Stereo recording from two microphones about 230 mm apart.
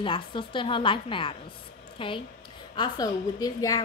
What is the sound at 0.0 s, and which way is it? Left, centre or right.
A woman's voice, left.